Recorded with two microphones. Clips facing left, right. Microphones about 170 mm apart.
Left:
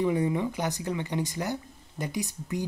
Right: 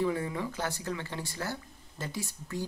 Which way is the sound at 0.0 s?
20° left (ahead or behind).